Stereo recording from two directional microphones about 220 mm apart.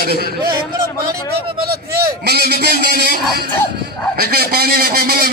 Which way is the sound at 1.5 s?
45° right (ahead or behind).